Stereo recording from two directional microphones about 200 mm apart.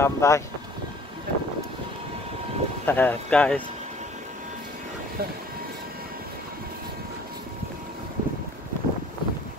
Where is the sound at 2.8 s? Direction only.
10° left (ahead or behind).